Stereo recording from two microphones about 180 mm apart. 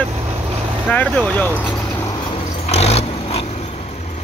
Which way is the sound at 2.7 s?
35° left (ahead or behind).